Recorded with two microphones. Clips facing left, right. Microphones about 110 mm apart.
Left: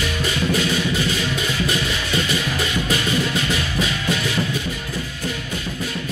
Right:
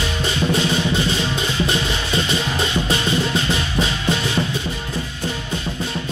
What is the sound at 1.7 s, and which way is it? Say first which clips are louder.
Music: right 1 dB; 25° right (ahead or behind).